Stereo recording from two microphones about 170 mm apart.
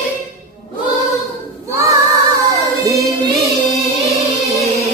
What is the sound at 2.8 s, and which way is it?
Music, 20° right (ahead or behind).